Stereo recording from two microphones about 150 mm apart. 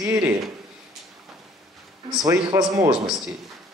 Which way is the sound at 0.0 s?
15° right (ahead or behind).